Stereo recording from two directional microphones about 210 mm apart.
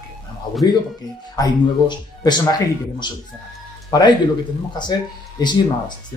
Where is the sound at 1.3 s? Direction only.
20° left (ahead or behind).